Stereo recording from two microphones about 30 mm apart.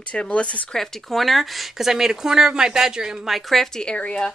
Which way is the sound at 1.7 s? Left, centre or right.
Centre.